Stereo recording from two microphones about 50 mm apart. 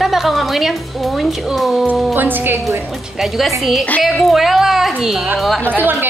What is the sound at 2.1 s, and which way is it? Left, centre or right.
Speech, right.